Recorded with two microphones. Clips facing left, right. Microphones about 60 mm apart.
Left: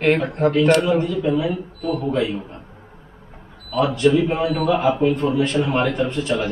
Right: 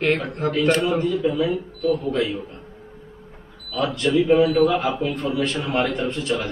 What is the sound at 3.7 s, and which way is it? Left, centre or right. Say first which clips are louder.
Speech: left 3 dB; centre.